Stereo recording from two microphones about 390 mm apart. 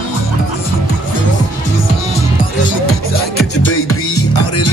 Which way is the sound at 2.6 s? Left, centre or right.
Left.